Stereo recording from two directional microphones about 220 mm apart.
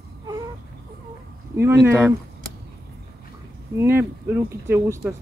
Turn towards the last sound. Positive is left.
turn(degrees=-10)  # may be behind; listen again after turning